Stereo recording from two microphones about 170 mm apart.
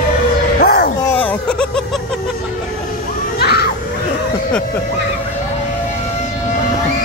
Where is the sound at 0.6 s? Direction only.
65° left (ahead or behind).